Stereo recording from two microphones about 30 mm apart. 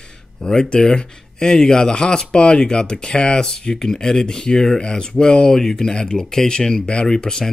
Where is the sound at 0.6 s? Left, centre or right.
Left.